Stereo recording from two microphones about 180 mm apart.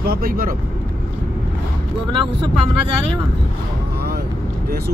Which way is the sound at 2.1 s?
30° right (ahead or behind).